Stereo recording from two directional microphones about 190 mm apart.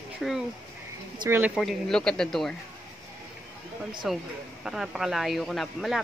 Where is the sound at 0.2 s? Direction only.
Centre (ahead or behind).